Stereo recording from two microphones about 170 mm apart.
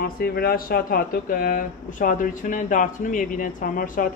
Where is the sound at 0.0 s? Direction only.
65° left (ahead or behind).